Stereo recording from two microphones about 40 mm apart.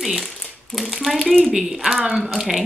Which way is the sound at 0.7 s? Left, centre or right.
Centre.